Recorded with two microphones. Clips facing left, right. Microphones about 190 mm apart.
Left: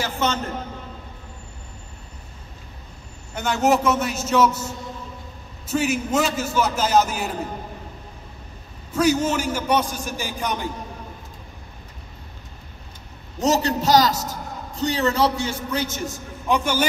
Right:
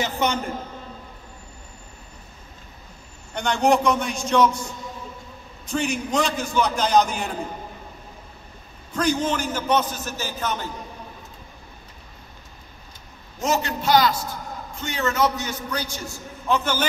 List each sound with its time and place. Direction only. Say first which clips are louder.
0.0 s a man's voice: even; 15° right (ahead or behind)
3.3 s a man's voice: even; 5° left (ahead or behind)
5.7 s a man's voice: left 3 dB; 5° left (ahead or behind)
8.9 s a man's voice: left 3 dB; 10° left (ahead or behind)
13.4 s a man's voice: left 4 dB; 35° left (ahead or behind); by 16.8 s 10° left (ahead or behind)